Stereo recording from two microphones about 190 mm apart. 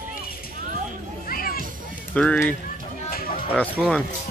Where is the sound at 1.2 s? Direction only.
50° left (ahead or behind).